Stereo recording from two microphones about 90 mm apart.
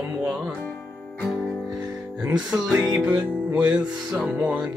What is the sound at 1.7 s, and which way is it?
Music, 5° right (ahead or behind).